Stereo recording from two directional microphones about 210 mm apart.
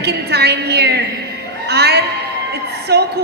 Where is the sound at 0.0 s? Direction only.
50° right (ahead or behind).